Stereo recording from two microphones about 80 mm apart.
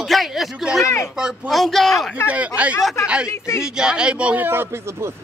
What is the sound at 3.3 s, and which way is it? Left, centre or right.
Speech, left.